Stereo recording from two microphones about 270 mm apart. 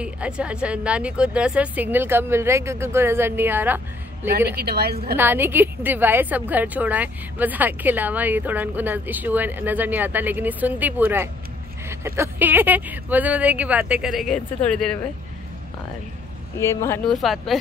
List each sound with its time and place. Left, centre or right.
0.0 s a woman's voice: centre
4.6 s a woman's voice: right
5.1 s a woman's voice: centre
16.5 s speech: centre